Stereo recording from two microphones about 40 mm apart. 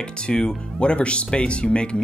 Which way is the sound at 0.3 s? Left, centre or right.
Centre.